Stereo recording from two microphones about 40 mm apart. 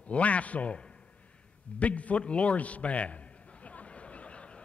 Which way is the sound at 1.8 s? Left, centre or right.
Left.